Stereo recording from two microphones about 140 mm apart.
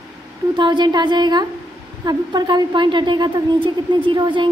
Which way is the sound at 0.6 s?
30° right (ahead or behind).